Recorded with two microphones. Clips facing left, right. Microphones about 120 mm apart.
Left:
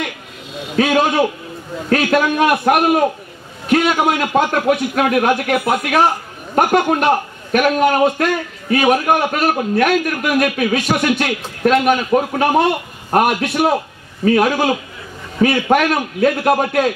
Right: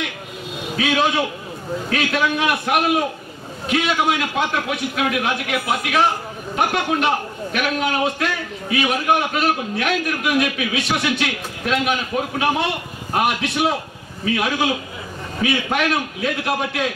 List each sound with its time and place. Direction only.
0.7 s a man's voice: 45° left (ahead or behind)